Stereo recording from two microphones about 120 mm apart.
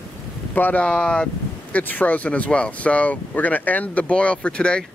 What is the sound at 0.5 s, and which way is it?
Speech, 15° left (ahead or behind).